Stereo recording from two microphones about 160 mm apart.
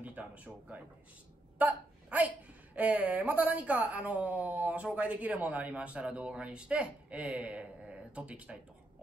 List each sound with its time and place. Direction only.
0.0 s speech: 10° right (ahead or behind)